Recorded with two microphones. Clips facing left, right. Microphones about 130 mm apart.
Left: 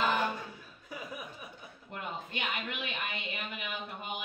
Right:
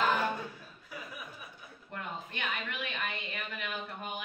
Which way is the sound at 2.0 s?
20° left (ahead or behind).